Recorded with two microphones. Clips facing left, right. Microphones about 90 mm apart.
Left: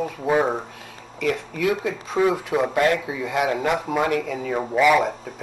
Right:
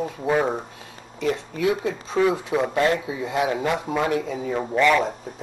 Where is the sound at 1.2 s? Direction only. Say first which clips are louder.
Even; 35° right (ahead or behind).